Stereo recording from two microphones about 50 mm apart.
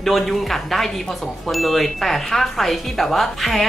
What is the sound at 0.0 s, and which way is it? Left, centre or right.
A woman's voice, centre.